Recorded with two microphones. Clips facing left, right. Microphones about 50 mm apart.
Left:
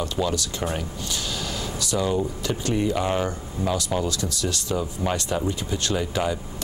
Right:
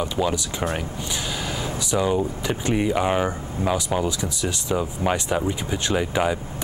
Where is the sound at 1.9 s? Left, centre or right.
Centre.